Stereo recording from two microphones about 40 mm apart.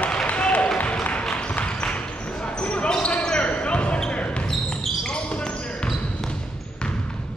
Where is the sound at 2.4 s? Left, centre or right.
Left.